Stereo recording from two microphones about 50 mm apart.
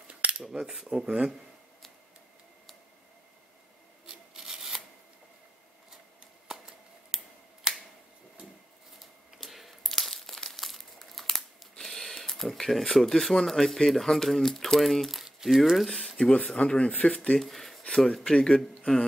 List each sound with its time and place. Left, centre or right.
0.1 s cutlery: right
0.5 s cutlery: centre
4.0 s rub: centre
7.1 s finger snapping: centre
9.4 s crumpling: centre
11.8 s speech: centre
16.0 s speech: centre